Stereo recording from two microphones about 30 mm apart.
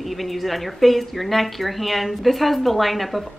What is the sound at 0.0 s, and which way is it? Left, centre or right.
Speech, centre.